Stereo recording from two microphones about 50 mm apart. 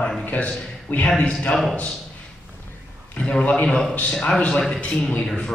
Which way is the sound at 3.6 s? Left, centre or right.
Centre.